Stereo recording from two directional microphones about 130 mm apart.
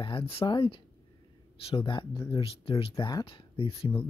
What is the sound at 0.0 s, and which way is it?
Speech, 45° left (ahead or behind).